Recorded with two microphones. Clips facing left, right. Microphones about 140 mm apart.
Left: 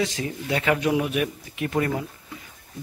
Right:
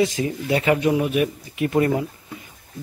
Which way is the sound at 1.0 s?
Centre (ahead or behind).